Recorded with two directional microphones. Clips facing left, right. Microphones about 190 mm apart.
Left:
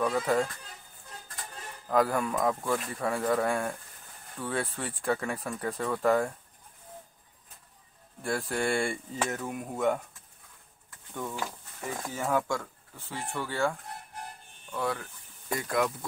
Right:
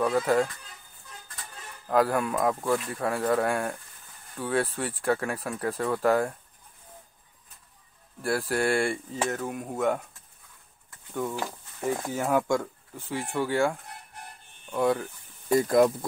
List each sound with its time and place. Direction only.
0.0 s speech: 5° right (ahead or behind)
1.9 s speech: centre (ahead or behind)
8.2 s speech: 5° right (ahead or behind)
11.1 s speech: 10° right (ahead or behind)
15.4 s speech: 35° right (ahead or behind)